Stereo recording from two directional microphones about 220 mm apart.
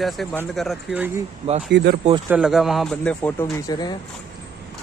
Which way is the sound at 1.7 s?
50° right (ahead or behind).